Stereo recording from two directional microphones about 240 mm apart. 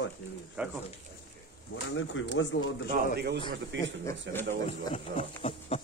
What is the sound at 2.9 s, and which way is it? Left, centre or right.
A man's voice, right.